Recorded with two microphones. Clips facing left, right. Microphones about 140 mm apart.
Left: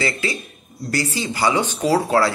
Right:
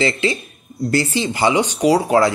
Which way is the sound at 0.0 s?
25° right (ahead or behind).